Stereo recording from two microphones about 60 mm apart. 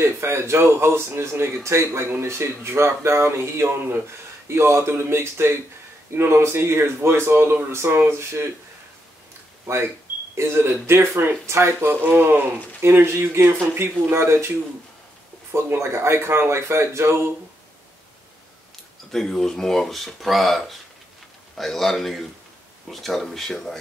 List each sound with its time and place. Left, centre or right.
0.0 s speech: right
10.3 s speech: right
12.0 s speech: right
19.1 s speech: centre